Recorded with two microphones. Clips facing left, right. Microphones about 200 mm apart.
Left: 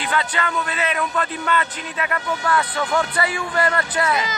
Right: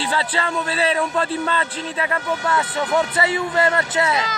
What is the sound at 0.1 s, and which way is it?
A man's voice, 30° right (ahead or behind).